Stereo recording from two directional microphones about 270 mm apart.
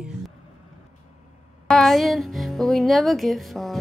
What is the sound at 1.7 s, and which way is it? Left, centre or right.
Speech, centre.